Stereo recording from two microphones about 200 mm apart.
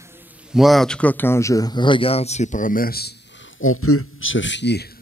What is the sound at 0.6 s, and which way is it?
Speech, centre (ahead or behind).